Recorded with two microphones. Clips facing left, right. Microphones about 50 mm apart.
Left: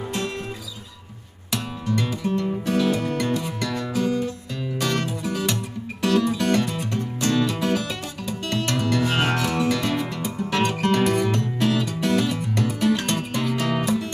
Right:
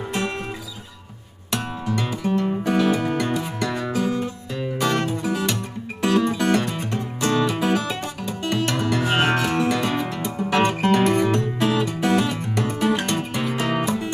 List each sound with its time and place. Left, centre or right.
1.5 s music: centre